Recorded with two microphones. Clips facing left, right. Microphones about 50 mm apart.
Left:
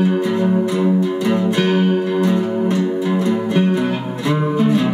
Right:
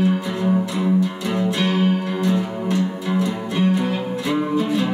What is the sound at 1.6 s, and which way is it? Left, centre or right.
Music, left.